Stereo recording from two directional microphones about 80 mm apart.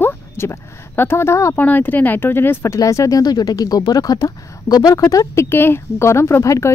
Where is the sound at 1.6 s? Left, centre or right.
Left.